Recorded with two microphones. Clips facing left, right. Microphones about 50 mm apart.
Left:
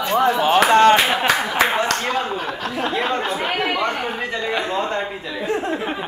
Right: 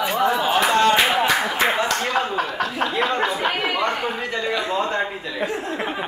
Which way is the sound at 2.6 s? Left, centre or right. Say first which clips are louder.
Even; left.